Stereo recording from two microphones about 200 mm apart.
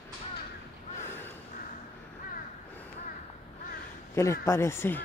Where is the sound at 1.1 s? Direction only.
10° left (ahead or behind).